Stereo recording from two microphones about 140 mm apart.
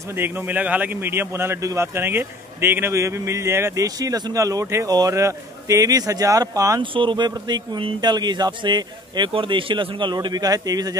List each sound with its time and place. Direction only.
0.1 s a man's voice: 15° right (ahead or behind)
6.8 s speech: 35° right (ahead or behind)